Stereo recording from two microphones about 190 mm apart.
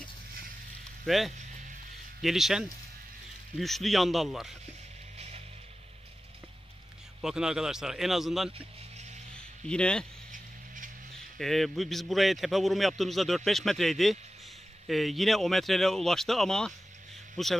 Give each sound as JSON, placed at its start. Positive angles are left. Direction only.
{"t": 1.0, "sound": "a man's voice", "side_deg": 0}
{"t": 7.2, "sound": "a man's voice", "side_deg": -5}
{"t": 9.3, "sound": "a sound", "side_deg": 5}
{"t": 11.3, "sound": "a man's voice", "side_deg": 0}